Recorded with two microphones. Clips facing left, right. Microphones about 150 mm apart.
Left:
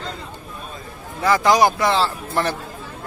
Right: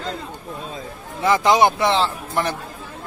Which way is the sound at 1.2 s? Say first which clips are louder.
Even; 20° right (ahead or behind).